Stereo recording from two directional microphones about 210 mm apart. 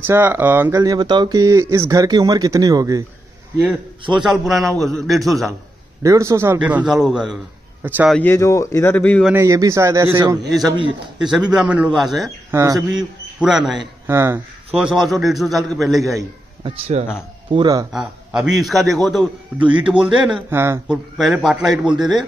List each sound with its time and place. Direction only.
0.0 s speech: 10° right (ahead or behind)
4.2 s a man's voice: centre (ahead or behind)
6.0 s speech: 15° right (ahead or behind)
8.1 s speech: 10° left (ahead or behind)
9.3 s speech: 15° right (ahead or behind)
11.2 s a man's voice: centre (ahead or behind)
12.5 s speech: 15° right (ahead or behind)
13.4 s a man's voice: centre (ahead or behind)
16.2 s a man's voice: 20° right (ahead or behind)
17.9 s a man's voice: 5° right (ahead or behind)